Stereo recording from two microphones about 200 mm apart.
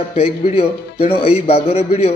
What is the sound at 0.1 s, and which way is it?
Speech, 30° left (ahead or behind).